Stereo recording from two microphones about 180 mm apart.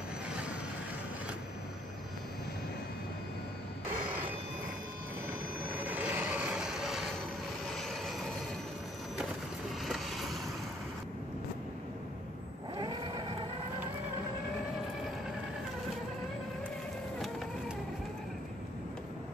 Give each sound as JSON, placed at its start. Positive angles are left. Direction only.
{"t": 5.9, "sound": "vehicle", "side_deg": -10}
{"t": 9.8, "sound": "boat", "side_deg": 0}
{"t": 12.7, "sound": "a sound", "side_deg": -25}